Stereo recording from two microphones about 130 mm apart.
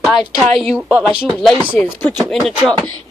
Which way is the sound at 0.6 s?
5° left (ahead or behind).